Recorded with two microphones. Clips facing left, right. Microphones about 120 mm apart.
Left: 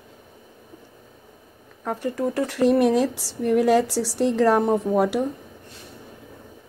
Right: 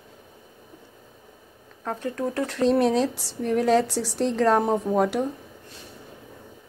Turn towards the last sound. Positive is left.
turn(degrees=5)  # may be behind; listen again after turning